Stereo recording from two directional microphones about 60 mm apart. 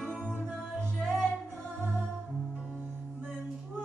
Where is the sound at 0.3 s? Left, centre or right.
Right.